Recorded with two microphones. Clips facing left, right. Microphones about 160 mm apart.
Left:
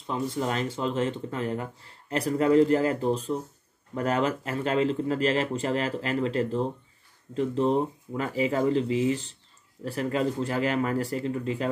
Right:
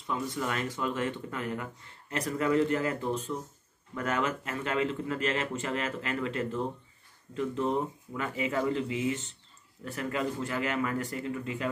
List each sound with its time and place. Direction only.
0.0 s speech: 30° left (ahead or behind)